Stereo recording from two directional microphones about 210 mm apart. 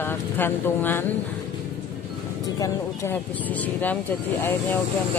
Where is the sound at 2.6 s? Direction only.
10° left (ahead or behind).